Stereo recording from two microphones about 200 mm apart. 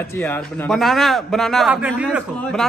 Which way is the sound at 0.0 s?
10° left (ahead or behind).